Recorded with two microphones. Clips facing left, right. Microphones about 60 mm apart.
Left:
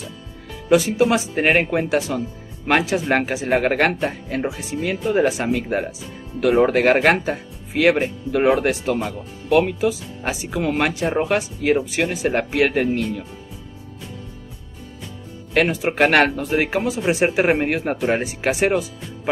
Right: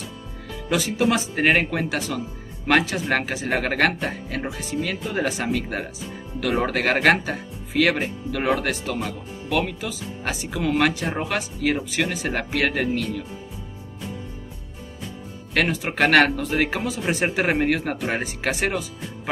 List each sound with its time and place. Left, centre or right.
0.7 s speech: centre
15.5 s speech: centre